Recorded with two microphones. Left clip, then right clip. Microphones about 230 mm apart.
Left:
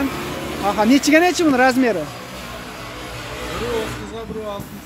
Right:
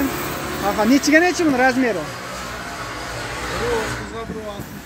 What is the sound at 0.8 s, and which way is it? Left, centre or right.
Speech, centre.